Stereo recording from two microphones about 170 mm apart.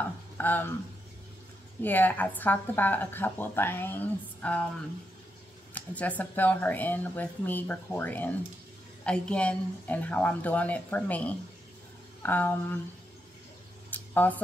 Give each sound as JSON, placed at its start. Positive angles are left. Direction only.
{"t": 0.4, "sound": "speech", "side_deg": 10}
{"t": 1.8, "sound": "speech", "side_deg": 10}
{"t": 5.8, "sound": "speech", "side_deg": 10}
{"t": 13.8, "sound": "a sound", "side_deg": 10}